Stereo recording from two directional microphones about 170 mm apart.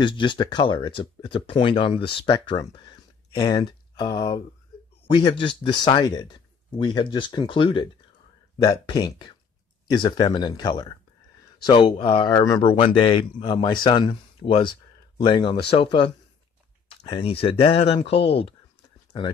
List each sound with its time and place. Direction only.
0.0 s speech: 25° left (ahead or behind)